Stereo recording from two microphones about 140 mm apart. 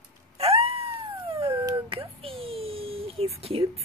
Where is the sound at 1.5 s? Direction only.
20° right (ahead or behind).